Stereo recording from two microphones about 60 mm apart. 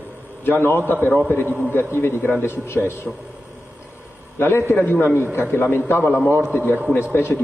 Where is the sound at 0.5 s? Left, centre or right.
Left.